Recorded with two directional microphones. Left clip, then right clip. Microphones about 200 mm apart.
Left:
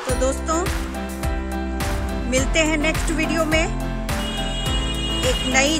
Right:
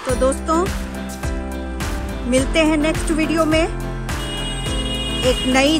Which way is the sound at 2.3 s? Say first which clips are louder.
Right 4 dB; 15° right (ahead or behind).